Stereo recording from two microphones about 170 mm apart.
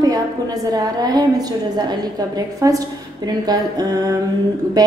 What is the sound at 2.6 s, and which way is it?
Speech, 20° right (ahead or behind).